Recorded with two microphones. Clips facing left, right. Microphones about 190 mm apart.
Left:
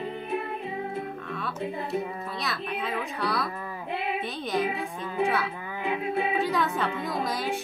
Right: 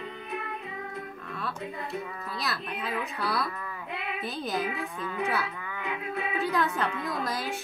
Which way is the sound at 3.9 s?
30° left (ahead or behind).